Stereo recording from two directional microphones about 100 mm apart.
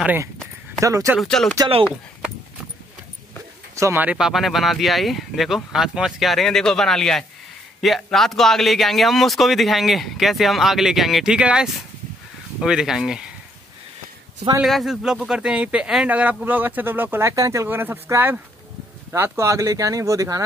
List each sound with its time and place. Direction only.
0.7 s speech: 30° right (ahead or behind)
1.2 s a man's voice: 5° left (ahead or behind)
3.7 s speech: 30° right (ahead or behind)
4.0 s a man's voice: 10° right (ahead or behind)
14.6 s a man's voice: centre (ahead or behind); by 20.4 s 35° right (ahead or behind)